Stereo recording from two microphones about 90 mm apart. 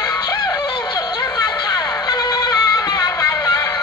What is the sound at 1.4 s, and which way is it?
Music, 50° left (ahead or behind).